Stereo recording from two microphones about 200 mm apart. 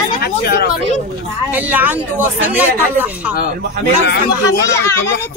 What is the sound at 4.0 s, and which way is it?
Speech, 55° left (ahead or behind).